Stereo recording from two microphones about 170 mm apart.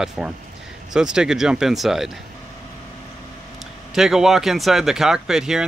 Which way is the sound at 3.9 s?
Centre (ahead or behind).